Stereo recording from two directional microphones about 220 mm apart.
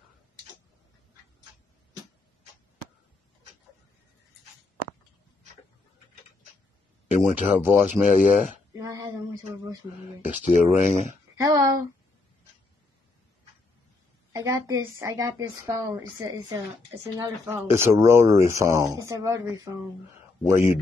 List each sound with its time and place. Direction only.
7.2 s a woman's voice: 10° right (ahead or behind)
8.0 s speech: 35° left (ahead or behind)
8.7 s a sound: 15° right (ahead or behind)
10.4 s speech: 35° left (ahead or behind)
11.3 s a woman's voice: 15° right (ahead or behind)
14.3 s a woman's voice: 15° right (ahead or behind)